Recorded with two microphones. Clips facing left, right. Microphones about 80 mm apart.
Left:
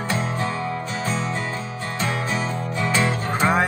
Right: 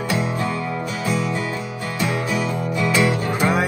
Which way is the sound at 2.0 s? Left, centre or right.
Left.